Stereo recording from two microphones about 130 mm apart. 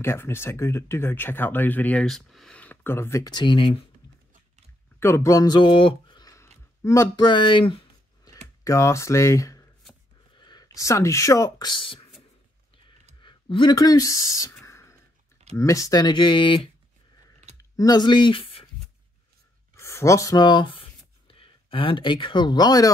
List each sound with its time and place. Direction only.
0.0 s speech: 20° left (ahead or behind); by 3.8 s 40° left (ahead or behind)
5.0 s speech: 20° left (ahead or behind)
7.2 s speech: 40° left (ahead or behind)
8.6 s speech: 25° left (ahead or behind)
10.3 s speech: 35° left (ahead or behind)
13.2 s speech: 40° left (ahead or behind)
14.6 s whispering: 20° left (ahead or behind)
15.5 s speech: 25° left (ahead or behind); by 16.7 s 40° left (ahead or behind)
17.6 s speech: 25° left (ahead or behind); by 18.7 s 45° left (ahead or behind)
19.8 s speech: 20° left (ahead or behind)